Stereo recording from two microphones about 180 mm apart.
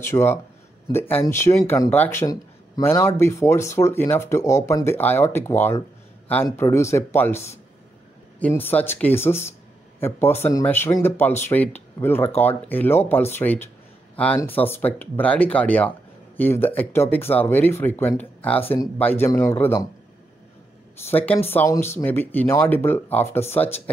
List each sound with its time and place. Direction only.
0.0 s speech: 15° left (ahead or behind)
21.1 s speech: 10° left (ahead or behind)